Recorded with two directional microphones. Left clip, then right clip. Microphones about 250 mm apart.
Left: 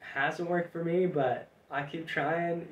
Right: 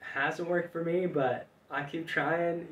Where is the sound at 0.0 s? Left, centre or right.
Centre.